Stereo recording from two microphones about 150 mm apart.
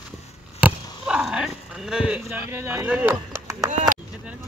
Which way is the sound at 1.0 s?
5° right (ahead or behind).